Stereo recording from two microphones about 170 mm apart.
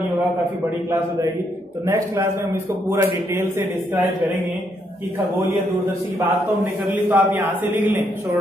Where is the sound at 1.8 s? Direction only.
15° right (ahead or behind).